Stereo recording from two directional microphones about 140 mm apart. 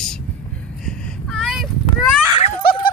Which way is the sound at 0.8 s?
5° left (ahead or behind).